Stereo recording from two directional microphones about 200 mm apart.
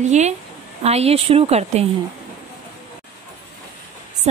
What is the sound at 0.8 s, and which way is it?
A woman's voice, 30° right (ahead or behind).